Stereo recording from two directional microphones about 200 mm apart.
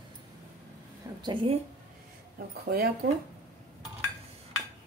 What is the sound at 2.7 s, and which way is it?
Speech, 45° right (ahead or behind).